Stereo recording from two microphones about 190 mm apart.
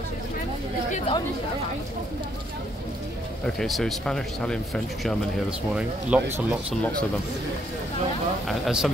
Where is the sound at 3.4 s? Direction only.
5° left (ahead or behind).